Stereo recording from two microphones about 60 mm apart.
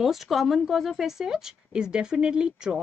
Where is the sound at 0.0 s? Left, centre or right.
Centre.